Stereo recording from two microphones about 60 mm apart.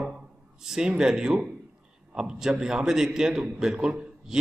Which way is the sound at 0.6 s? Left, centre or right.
Centre.